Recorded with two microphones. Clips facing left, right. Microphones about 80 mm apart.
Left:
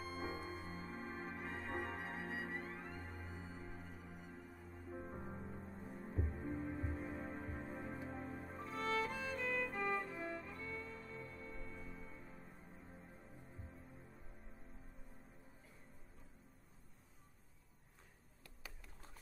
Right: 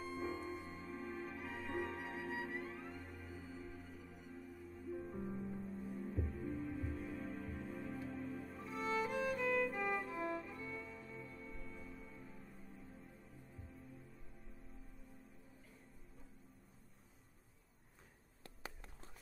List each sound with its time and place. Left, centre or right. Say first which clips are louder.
0.0 s music: right 2 dB; centre
0.6 s music: right 1 dB; left
8.6 s music: right 1 dB; centre